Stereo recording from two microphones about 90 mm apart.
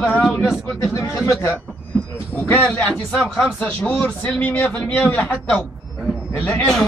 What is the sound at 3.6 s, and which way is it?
A man's voice, 20° left (ahead or behind).